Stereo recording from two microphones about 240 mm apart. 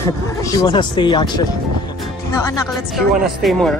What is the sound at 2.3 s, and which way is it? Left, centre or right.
Music, centre.